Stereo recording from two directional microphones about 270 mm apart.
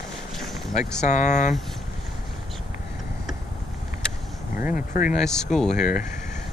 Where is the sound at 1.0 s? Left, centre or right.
Left.